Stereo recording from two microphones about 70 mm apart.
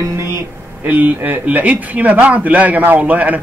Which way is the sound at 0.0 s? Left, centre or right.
Right.